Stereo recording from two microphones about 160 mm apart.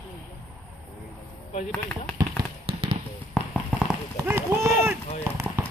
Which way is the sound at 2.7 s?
40° right (ahead or behind).